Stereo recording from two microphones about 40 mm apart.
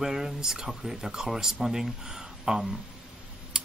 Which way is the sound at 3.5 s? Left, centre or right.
Right.